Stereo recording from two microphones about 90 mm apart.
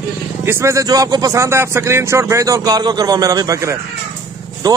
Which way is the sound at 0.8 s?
45° right (ahead or behind).